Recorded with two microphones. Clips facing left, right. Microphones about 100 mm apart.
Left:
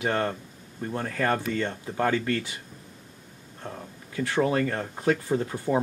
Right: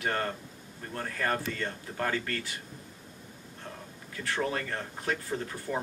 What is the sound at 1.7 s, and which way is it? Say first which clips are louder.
Speech: left 6 dB; 20° left (ahead or behind).